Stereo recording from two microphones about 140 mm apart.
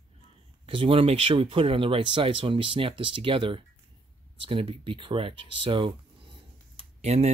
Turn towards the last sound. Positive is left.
turn(degrees=-50)  # may be behind; listen again after turning